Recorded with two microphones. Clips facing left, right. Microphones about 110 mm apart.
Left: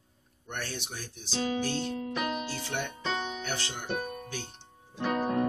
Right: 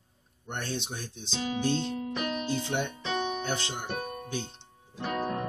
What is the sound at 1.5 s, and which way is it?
Music, 20° right (ahead or behind).